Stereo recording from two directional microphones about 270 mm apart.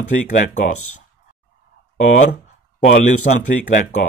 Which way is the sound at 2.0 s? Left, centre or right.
Left.